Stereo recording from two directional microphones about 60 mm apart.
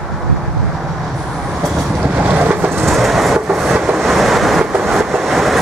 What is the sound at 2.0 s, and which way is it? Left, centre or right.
Train, right.